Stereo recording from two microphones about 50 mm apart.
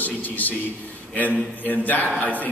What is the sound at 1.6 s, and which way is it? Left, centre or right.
Speech, left.